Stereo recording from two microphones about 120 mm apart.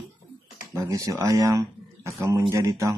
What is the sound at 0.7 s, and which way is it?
Speech, 30° right (ahead or behind).